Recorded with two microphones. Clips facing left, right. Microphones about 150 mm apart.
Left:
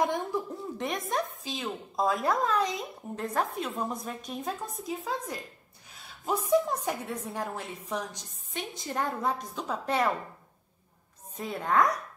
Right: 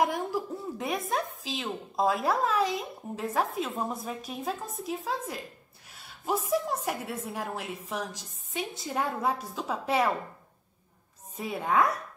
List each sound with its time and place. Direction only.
0.0 s a woman's voice: 5° right (ahead or behind)
11.3 s a woman's voice: 5° right (ahead or behind)